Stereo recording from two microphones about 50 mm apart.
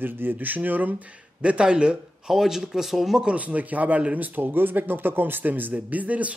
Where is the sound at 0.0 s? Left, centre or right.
Right.